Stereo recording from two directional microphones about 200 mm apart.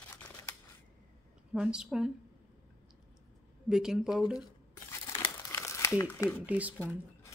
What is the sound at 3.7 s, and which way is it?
Speech, 5° right (ahead or behind).